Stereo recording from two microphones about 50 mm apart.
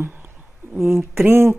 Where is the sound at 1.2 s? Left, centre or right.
Right.